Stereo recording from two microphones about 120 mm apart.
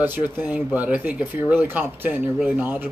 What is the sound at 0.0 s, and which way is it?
Speech, 15° right (ahead or behind).